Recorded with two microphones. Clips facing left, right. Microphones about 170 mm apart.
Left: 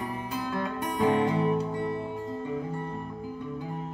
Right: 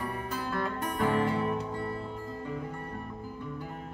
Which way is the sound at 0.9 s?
20° left (ahead or behind).